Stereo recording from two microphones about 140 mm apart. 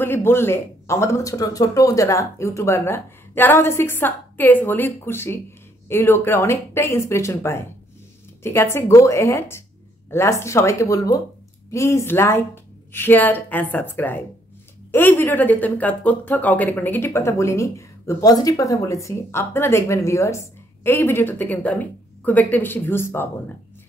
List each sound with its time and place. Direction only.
0.0 s speech: 15° left (ahead or behind)